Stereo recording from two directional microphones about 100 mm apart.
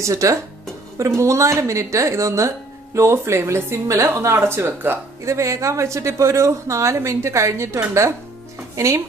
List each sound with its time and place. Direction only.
0.0 s speech: 35° right (ahead or behind)